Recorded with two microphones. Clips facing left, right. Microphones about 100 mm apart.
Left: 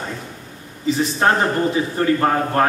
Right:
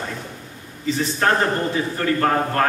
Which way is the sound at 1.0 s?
20° left (ahead or behind).